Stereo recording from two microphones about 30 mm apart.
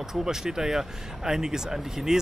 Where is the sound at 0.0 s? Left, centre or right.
Centre.